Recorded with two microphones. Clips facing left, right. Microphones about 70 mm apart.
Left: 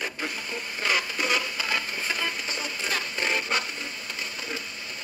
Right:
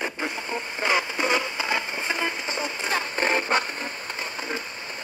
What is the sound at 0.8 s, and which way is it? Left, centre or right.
Radio, right.